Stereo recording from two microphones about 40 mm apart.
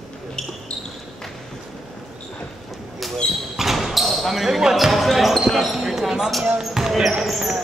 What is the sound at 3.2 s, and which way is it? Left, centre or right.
Speech, left.